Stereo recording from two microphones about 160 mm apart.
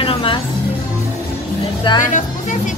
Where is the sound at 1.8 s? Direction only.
30° left (ahead or behind).